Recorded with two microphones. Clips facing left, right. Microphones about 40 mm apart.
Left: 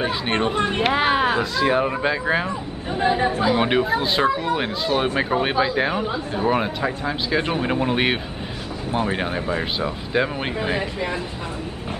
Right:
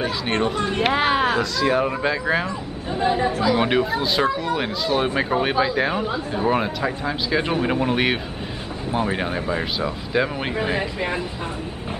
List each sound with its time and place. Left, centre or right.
0.0 s speech: centre
0.8 s speech: centre; by 3.5 s left
3.5 s speech: centre
10.8 s speech: centre